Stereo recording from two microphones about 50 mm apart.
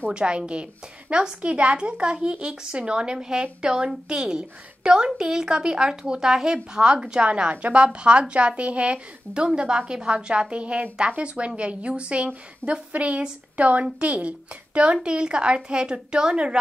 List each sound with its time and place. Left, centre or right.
0.1 s a woman's voice: centre